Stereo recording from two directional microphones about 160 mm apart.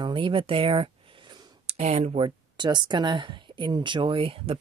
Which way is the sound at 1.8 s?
45° right (ahead or behind).